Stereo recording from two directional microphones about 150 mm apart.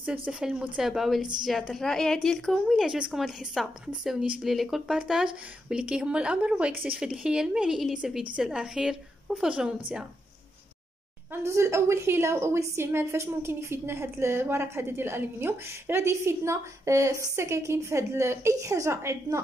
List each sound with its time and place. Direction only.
0.0 s a woman's voice: 5° right (ahead or behind)
11.4 s a woman's voice: 20° right (ahead or behind)